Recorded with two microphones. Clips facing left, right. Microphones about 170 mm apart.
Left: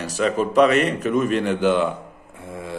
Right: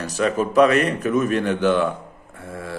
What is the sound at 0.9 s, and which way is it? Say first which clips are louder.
A man's voice: even; 10° left (ahead or behind).